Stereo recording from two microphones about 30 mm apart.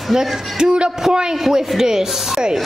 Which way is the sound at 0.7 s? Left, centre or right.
Right.